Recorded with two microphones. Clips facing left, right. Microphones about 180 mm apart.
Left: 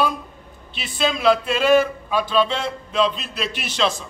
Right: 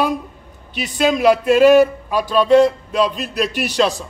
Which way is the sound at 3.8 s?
40° right (ahead or behind).